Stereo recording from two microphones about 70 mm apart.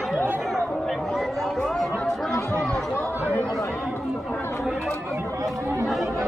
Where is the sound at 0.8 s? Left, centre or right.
Centre.